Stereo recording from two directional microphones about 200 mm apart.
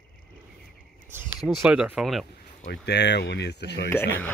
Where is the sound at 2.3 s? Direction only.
50° left (ahead or behind).